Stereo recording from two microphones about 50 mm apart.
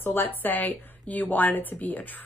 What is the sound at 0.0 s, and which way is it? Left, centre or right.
A woman's voice, left.